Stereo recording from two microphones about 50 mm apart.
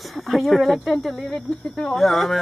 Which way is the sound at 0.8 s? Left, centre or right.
Centre.